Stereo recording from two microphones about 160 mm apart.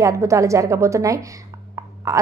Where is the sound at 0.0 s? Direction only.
20° right (ahead or behind).